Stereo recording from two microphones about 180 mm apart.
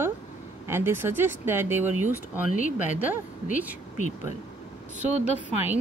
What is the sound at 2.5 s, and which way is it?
Speech, 45° left (ahead or behind).